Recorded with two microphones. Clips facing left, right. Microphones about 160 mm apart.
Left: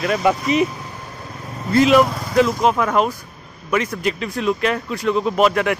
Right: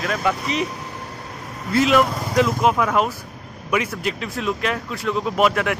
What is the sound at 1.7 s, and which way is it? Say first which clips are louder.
Speech: left 3 dB; centre (ahead or behind).